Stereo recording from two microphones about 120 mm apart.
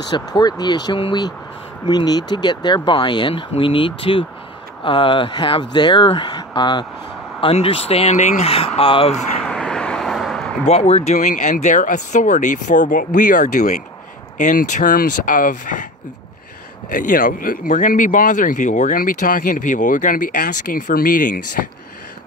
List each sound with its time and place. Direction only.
0.1 s speech: 35° left (ahead or behind)
7.3 s speech: 50° left (ahead or behind); by 8.5 s 75° left (ahead or behind)
8.5 s speech: 55° left (ahead or behind)
9.4 s vehicle: 5° left (ahead or behind)
10.6 s speech: 65° left (ahead or behind); by 15.9 s 90° left
17.0 s speech: 90° left